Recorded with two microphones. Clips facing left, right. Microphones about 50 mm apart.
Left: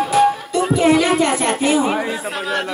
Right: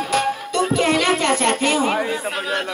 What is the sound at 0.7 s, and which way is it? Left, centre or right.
Speech, right.